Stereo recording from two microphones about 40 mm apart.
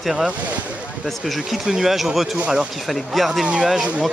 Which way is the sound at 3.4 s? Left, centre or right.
Right.